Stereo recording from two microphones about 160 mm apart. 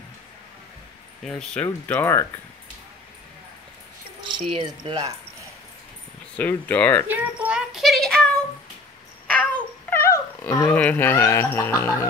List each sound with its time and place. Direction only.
1.2 s speech: 5° left (ahead or behind)
4.6 s speech: 30° right (ahead or behind)
6.3 s speech: 10° left (ahead or behind)
7.1 s child singing: 5° right (ahead or behind)
9.3 s dog: 10° left (ahead or behind)